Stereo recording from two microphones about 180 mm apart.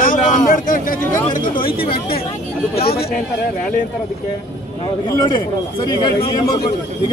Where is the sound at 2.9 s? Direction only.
60° left (ahead or behind).